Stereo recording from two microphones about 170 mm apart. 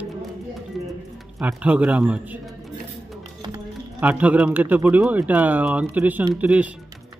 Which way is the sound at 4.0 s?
10° right (ahead or behind).